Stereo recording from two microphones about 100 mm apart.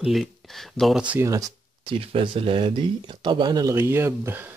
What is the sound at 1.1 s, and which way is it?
Speech, 35° right (ahead or behind).